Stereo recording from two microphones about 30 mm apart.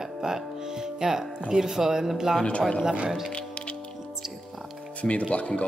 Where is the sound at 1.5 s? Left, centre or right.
Centre.